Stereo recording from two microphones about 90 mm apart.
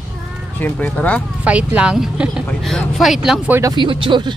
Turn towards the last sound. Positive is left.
turn(degrees=-65)  # may be behind; listen again after turning